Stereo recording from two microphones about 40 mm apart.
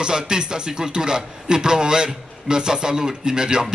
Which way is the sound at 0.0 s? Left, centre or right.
Centre.